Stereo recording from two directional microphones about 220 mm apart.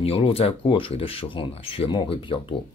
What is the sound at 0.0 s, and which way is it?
Speech, 25° left (ahead or behind).